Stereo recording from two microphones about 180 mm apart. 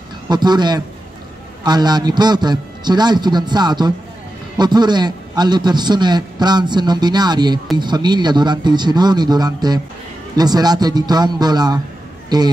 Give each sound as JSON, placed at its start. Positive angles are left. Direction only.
{"t": 0.3, "sound": "a man's voice", "side_deg": -25}